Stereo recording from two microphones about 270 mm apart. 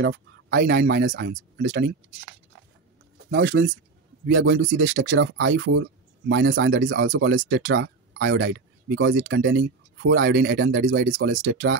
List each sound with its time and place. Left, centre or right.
0.0 s speech: right
3.3 s speech: right